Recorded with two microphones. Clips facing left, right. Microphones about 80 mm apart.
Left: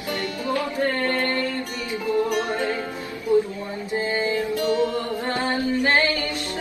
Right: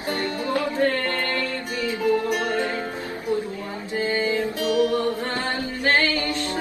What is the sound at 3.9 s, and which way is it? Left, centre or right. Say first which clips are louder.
Music: right 1 dB; left.